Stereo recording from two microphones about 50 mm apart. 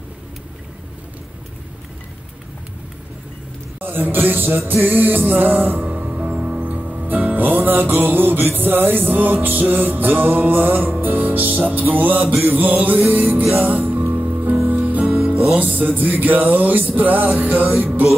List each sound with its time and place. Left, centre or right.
3.8 s music: right
5.9 s music: centre